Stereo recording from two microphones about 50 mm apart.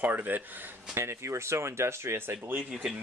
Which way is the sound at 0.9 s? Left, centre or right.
Right.